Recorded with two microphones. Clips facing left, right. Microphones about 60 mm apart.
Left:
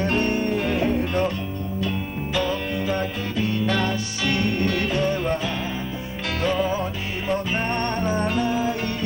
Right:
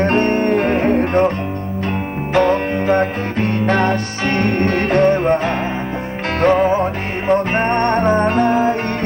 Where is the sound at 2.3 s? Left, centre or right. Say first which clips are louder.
Right 10 dB; right.